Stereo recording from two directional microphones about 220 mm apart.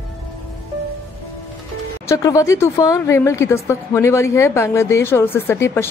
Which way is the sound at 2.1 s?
15° left (ahead or behind).